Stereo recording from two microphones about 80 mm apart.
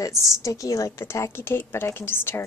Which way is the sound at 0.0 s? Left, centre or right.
Left.